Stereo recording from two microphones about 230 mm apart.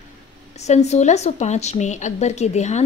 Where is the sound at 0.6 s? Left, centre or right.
Left.